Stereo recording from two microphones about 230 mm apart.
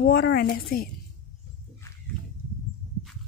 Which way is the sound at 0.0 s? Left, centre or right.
Left.